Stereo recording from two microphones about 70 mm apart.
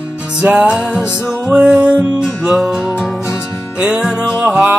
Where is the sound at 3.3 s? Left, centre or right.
Left.